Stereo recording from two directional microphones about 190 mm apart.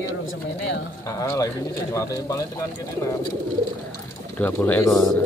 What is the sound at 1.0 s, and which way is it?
Speech, 15° left (ahead or behind).